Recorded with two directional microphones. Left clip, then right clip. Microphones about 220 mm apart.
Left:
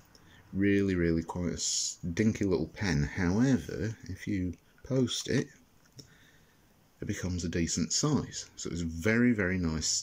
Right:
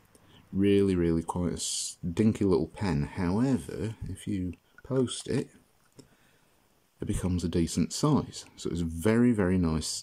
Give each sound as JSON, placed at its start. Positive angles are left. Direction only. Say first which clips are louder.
{"t": 0.6, "sound": "speech", "louder": "right 3 dB", "side_deg": -10}
{"t": 7.0, "sound": "speech", "louder": "right 3 dB", "side_deg": -15}